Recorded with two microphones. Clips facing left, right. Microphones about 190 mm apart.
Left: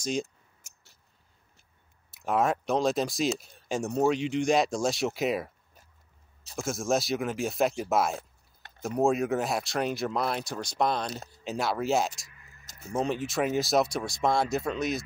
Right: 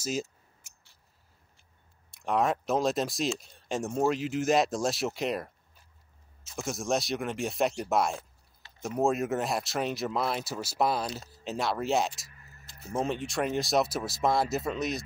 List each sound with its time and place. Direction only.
0.0 s speech: 5° right (ahead or behind)
2.0 s speech: 5° left (ahead or behind)
6.5 s speech: centre (ahead or behind)
12.3 s a sound: 40° right (ahead or behind)
12.9 s speech: centre (ahead or behind)